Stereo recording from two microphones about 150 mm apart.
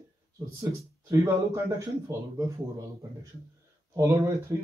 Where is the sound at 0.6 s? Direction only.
20° right (ahead or behind).